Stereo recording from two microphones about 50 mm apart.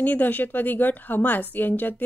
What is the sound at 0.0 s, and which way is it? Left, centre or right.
A woman's voice, left.